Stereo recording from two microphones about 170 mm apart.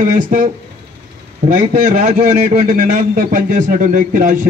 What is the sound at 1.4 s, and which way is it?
Speech, 35° right (ahead or behind).